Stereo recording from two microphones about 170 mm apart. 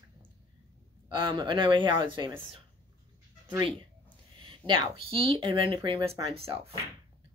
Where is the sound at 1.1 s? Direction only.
30° right (ahead or behind).